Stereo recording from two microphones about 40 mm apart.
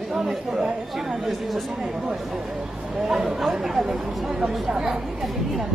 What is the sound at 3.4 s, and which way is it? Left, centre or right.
Speech, centre.